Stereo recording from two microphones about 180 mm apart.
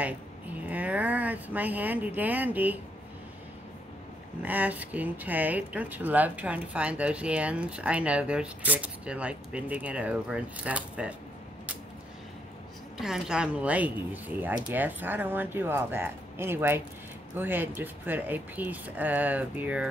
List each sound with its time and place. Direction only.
0.7 s speech: 10° right (ahead or behind)
4.4 s speech: 10° right (ahead or behind)
12.9 s speech: centre (ahead or behind)